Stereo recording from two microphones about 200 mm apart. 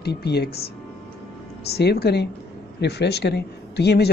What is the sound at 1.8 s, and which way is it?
Speech, 55° left (ahead or behind).